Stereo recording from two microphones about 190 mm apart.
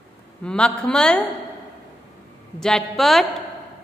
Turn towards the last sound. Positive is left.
turn(degrees=0)  # may be behind; listen again after turning